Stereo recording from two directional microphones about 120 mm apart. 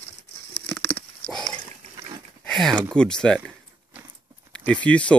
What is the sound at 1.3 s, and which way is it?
Dog, 5° left (ahead or behind).